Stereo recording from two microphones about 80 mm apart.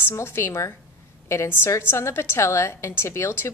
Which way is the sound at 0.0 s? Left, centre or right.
Left.